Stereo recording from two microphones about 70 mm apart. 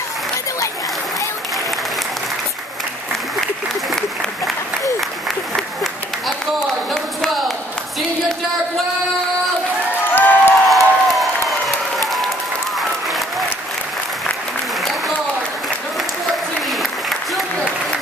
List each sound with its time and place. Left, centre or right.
6.9 s a sound: centre
10.1 s crowd: left
10.7 s applause: centre